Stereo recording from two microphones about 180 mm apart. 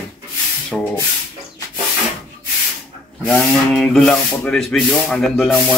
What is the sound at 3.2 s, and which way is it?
Speech, 5° left (ahead or behind).